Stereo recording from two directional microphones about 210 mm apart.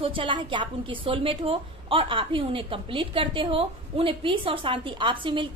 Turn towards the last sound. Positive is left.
turn(degrees=-25)  # may be behind; listen again after turning